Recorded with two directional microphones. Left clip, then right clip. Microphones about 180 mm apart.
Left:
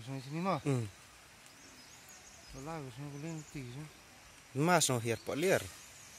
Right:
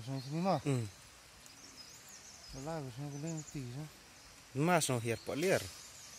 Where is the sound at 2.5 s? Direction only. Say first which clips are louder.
Right 2 dB; 55° right (ahead or behind).